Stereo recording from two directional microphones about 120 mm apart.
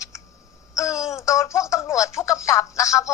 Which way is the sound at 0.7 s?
25° left (ahead or behind).